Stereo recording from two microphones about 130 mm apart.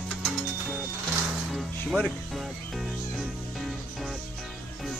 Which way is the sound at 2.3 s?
Centre (ahead or behind).